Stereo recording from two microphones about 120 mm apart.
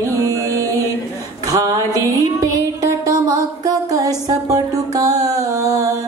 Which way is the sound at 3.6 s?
30° right (ahead or behind).